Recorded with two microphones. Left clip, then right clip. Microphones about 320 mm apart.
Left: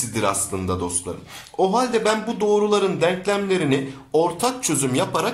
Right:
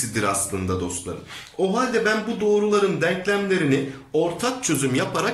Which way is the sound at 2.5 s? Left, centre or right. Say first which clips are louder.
Even; centre.